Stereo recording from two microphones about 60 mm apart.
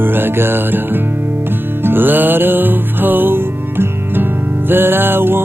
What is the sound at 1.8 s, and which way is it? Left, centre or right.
Music, right.